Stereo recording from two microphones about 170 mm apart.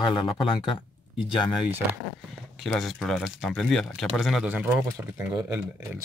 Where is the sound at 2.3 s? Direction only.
Centre (ahead or behind).